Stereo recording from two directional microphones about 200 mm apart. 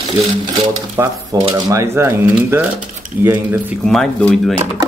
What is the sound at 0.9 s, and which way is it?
Speech, 15° right (ahead or behind).